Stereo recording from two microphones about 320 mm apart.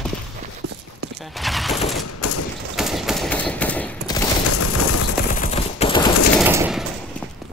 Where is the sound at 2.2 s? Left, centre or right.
Left.